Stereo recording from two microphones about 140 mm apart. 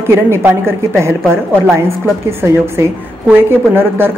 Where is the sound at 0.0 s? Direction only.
15° right (ahead or behind).